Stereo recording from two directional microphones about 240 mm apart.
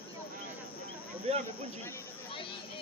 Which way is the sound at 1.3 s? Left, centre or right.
Right.